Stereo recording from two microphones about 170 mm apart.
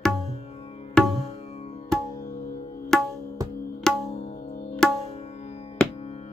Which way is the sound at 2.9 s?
Centre (ahead or behind).